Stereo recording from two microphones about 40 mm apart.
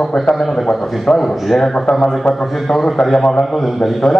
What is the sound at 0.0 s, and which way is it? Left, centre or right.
A man's voice, centre.